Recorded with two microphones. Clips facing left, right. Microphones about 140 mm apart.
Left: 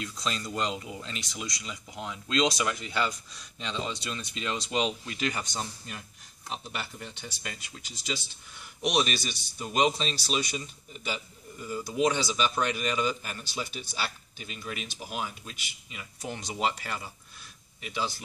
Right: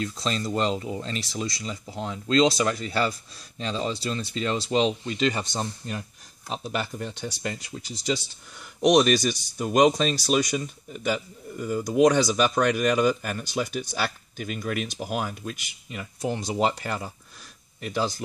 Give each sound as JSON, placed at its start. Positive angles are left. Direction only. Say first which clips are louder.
{"t": 0.0, "sound": "speech", "louder": "right 6 dB", "side_deg": -30}
{"t": 6.5, "sound": "speech", "louder": "right 8 dB", "side_deg": -55}